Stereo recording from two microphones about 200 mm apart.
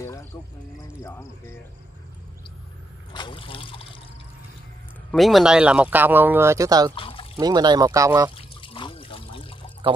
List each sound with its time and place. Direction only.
0.0 s music: 15° left (ahead or behind)
1.0 s cricket: 15° left (ahead or behind)
3.1 s trickle: 25° left (ahead or behind)
5.1 s speech: centre (ahead or behind); by 6.9 s 15° right (ahead or behind)
7.0 s a sound: 25° left (ahead or behind)
7.3 s speech: 20° right (ahead or behind)
8.4 s trickle: 25° left (ahead or behind)